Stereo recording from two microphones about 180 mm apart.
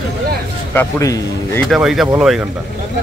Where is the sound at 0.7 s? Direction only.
15° left (ahead or behind).